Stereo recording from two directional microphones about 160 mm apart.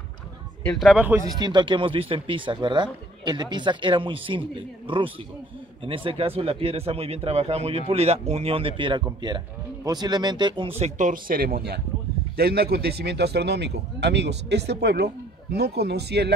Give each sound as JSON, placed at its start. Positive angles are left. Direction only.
{"t": 0.7, "sound": "speech", "side_deg": 0}
{"t": 1.3, "sound": "speech", "side_deg": -25}
{"t": 10.8, "sound": "speech", "side_deg": -50}